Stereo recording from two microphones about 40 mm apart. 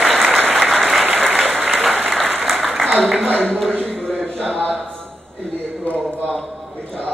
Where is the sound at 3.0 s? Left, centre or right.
Centre.